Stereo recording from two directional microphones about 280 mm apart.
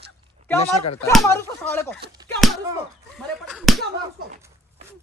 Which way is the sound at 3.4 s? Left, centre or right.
Centre.